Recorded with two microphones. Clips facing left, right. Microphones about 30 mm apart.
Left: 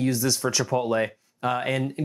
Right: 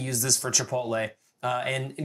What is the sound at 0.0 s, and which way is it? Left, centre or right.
Speech, centre.